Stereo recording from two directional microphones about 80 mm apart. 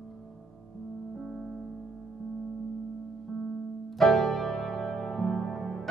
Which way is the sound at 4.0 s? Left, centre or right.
Centre.